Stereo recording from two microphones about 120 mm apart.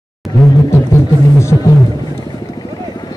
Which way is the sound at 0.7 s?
20° left (ahead or behind).